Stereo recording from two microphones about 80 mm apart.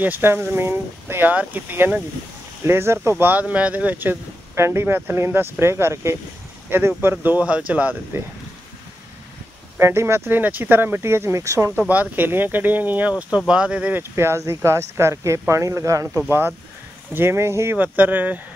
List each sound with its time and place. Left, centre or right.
0.0 s speech: right
4.6 s speech: right
9.8 s speech: right
11.9 s speech: right
13.5 s speech: centre
13.9 s speech: right
16.3 s speech: right
17.7 s speech: centre